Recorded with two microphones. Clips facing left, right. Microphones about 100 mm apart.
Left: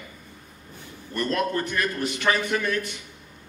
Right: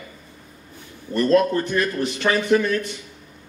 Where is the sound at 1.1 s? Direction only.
25° right (ahead or behind).